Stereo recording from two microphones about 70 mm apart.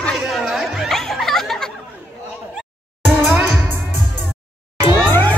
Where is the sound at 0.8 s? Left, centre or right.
Centre.